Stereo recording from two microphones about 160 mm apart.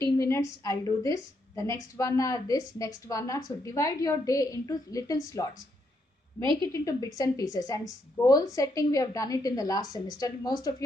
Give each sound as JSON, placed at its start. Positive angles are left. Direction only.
{"t": 0.0, "sound": "a woman's voice", "side_deg": 15}
{"t": 6.4, "sound": "a woman's voice", "side_deg": -30}
{"t": 6.7, "sound": "a woman's voice", "side_deg": 20}